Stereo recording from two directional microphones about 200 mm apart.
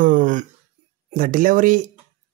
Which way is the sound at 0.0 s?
40° right (ahead or behind).